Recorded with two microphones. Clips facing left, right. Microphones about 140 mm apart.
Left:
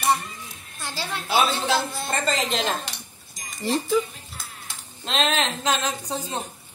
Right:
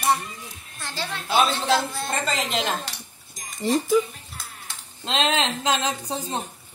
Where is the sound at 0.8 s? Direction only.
5° left (ahead or behind); by 4.0 s 10° right (ahead or behind).